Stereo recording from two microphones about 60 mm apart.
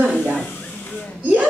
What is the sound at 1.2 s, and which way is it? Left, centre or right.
Speech, right.